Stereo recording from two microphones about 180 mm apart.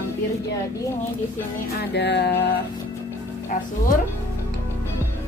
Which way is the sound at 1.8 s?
70° left (ahead or behind).